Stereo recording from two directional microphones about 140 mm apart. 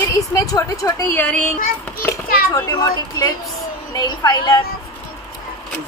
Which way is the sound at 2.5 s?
30° left (ahead or behind).